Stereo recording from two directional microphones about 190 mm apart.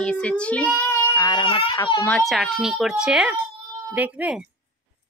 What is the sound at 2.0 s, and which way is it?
A woman's voice, 5° left (ahead or behind).